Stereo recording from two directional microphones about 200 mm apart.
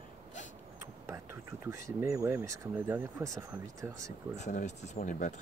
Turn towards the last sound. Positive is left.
turn(degrees=40)  # may be behind; listen again after turning